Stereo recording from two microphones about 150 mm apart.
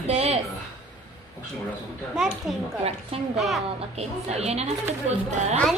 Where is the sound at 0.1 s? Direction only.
45° right (ahead or behind).